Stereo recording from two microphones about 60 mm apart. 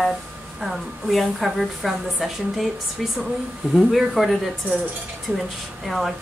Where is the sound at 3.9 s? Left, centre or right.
Centre.